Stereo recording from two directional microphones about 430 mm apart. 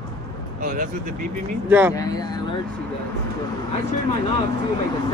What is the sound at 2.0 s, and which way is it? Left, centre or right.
Speech, centre.